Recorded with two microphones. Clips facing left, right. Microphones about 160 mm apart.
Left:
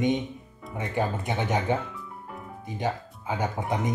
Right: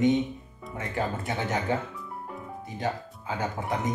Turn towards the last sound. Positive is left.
turn(degrees=20)  # may be behind; listen again after turning